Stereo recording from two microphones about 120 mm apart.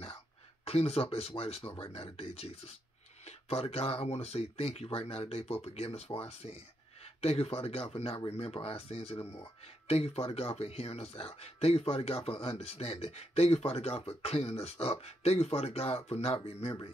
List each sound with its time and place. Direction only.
0.7 s speech: 55° left (ahead or behind)